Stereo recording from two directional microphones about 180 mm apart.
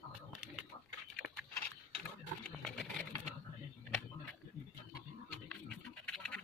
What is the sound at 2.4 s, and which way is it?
Wild animals, 5° left (ahead or behind).